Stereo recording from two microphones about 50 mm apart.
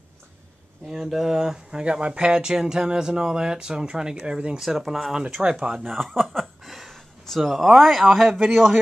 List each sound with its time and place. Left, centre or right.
0.8 s speech: centre
4.6 s speech: centre
5.4 s speech: centre
5.9 s a sound: centre
7.6 s speech: centre